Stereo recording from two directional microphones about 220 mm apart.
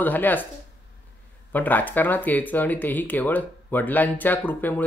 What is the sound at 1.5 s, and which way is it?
Speech, 10° left (ahead or behind).